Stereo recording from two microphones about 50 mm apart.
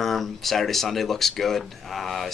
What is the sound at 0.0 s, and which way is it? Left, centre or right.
Speech, centre.